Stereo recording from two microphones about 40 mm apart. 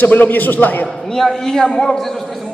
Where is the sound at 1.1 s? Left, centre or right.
Centre.